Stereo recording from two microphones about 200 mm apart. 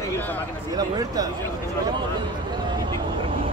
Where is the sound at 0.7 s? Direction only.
20° right (ahead or behind).